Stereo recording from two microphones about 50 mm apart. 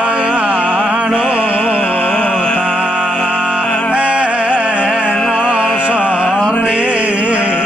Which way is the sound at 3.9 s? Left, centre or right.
Right.